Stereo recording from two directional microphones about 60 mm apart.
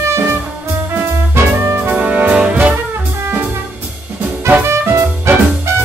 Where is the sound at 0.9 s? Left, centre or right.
Right.